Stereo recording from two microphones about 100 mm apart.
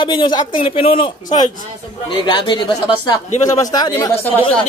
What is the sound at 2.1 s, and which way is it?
Speech, 50° left (ahead or behind).